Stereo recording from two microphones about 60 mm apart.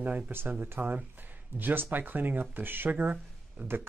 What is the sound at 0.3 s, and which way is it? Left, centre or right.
Speech, right.